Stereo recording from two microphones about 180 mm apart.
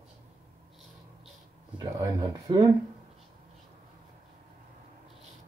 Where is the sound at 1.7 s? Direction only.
20° right (ahead or behind).